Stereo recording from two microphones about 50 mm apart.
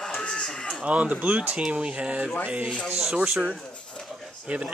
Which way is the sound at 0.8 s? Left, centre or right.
Right.